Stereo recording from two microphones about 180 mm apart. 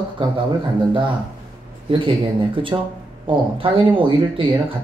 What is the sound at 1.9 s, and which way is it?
Speech, 30° right (ahead or behind).